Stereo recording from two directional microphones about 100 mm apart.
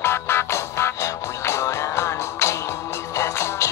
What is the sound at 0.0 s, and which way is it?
Music, 25° left (ahead or behind).